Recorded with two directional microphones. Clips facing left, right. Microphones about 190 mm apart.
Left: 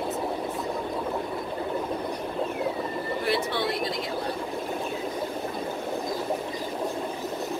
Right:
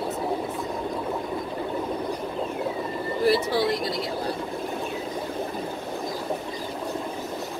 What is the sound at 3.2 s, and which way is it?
Speech, 30° right (ahead or behind).